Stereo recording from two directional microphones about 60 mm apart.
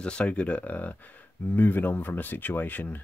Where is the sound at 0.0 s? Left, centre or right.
Centre.